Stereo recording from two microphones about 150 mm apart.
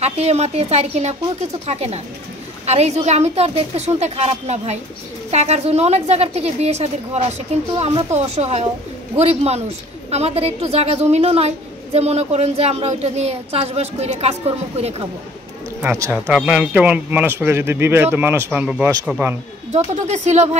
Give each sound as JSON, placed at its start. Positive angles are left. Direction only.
{"t": 0.0, "sound": "a woman's voice", "side_deg": -45}
{"t": 15.8, "sound": "speech", "side_deg": -15}
{"t": 19.7, "sound": "a woman's voice", "side_deg": -50}